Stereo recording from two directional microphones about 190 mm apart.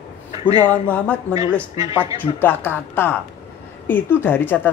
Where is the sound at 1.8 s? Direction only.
15° right (ahead or behind).